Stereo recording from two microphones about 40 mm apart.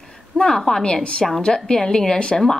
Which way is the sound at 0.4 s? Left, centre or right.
Centre.